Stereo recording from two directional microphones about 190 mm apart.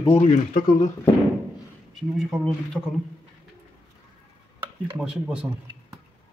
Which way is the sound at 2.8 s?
5° left (ahead or behind).